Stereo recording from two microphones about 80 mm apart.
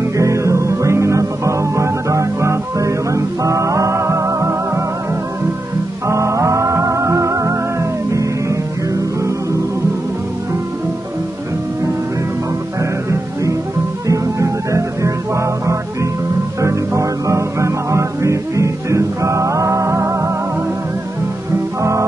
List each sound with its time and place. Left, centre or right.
0.2 s music: right
6.0 s music: right
13.1 s music: right